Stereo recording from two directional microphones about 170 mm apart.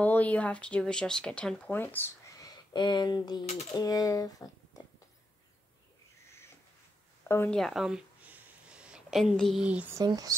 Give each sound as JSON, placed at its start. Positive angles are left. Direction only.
{"t": 0.0, "sound": "speech", "side_deg": 10}
{"t": 7.2, "sound": "speech", "side_deg": 15}
{"t": 7.5, "sound": "a sound", "side_deg": 0}
{"t": 9.9, "sound": "speech", "side_deg": -20}